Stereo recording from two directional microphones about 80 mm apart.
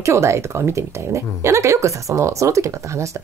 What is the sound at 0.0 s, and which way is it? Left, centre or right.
Speech, right.